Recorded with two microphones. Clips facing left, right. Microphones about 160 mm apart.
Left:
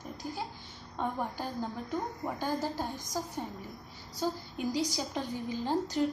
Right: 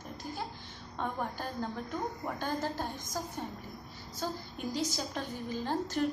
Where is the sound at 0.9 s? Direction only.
15° left (ahead or behind).